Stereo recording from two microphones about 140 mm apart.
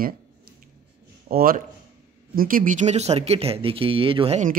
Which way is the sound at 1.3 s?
90° right.